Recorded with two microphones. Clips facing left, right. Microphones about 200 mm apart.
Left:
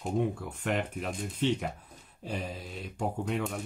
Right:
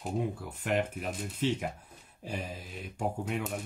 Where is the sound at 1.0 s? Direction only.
5° right (ahead or behind).